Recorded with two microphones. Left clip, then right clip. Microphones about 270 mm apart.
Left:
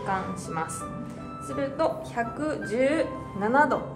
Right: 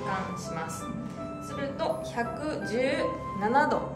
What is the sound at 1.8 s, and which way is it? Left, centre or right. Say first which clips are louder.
A woman's voice: left 3 dB; centre.